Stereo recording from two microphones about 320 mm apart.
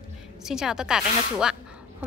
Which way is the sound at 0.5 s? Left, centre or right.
Centre.